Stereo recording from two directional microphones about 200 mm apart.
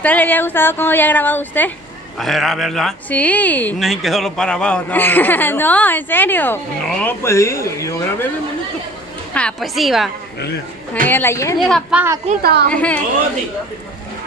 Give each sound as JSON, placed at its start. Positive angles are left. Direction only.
{"t": 0.0, "sound": "speech", "side_deg": 10}
{"t": 9.3, "sound": "a woman's voice", "side_deg": 5}
{"t": 11.1, "sound": "speech", "side_deg": 10}
{"t": 11.6, "sound": "a woman's voice", "side_deg": 0}
{"t": 12.3, "sound": "a woman's voice", "side_deg": -45}
{"t": 12.7, "sound": "speech", "side_deg": 5}